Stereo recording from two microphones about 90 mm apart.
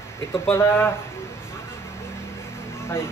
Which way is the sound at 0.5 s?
30° left (ahead or behind).